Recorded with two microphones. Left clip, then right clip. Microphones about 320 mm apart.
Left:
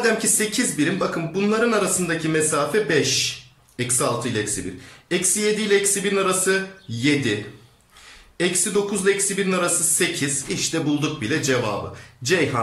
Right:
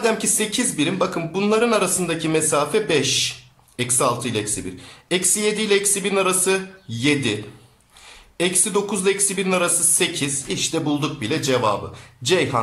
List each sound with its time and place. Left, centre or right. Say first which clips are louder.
0.0 s speech: even; centre
8.4 s speech: even; centre